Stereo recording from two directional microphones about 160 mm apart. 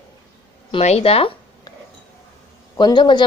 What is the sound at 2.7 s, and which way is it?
Speech, 30° left (ahead or behind).